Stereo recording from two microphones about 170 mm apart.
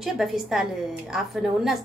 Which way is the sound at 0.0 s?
Centre (ahead or behind).